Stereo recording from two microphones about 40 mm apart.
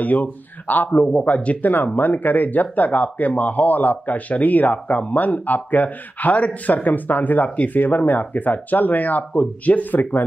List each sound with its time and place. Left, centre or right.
0.0 s a man's voice: left